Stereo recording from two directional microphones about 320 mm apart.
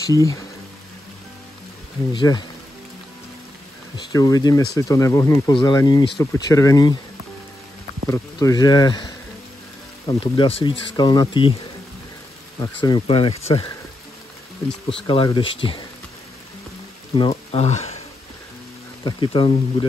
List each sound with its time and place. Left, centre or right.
0.0 s speech: centre
2.1 s speech: centre
3.9 s speech: centre
8.1 s speech: centre
12.8 s speech: centre
14.7 s speech: centre
15.0 s speech: centre
17.1 s speech: centre
19.0 s speech: centre